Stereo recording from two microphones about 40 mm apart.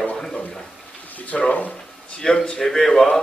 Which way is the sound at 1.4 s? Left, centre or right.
Left.